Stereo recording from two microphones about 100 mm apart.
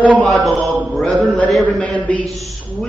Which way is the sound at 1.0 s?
10° left (ahead or behind).